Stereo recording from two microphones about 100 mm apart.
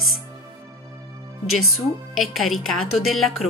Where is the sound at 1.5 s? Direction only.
Centre (ahead or behind).